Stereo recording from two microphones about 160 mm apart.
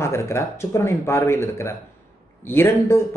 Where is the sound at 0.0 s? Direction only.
15° left (ahead or behind).